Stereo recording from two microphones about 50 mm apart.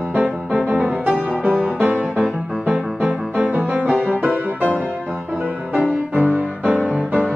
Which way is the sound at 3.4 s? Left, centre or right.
Right.